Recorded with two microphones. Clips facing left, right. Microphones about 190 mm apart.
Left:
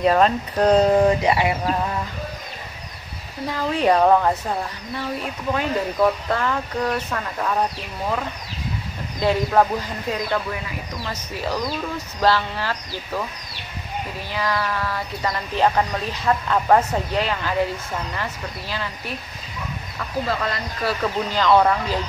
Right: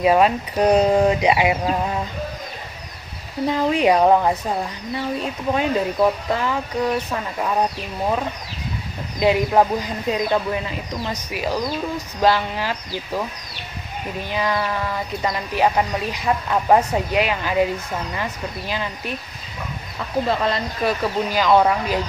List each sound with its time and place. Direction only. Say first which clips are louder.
0.0 s speech: right 1 dB; 10° right (ahead or behind)
3.4 s speech: right 2 dB; 20° right (ahead or behind)
9.2 s speech: right 2 dB; 15° right (ahead or behind)
14.3 s speech: right 2 dB; 20° right (ahead or behind)
20.2 s speech: right 4 dB; 20° right (ahead or behind)
21.0 s speech: right 1 dB; 10° right (ahead or behind)